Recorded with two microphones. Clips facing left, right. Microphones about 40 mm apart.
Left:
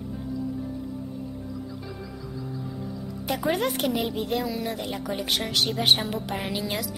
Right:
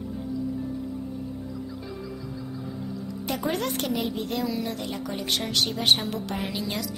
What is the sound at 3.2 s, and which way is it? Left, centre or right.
A woman's voice, centre.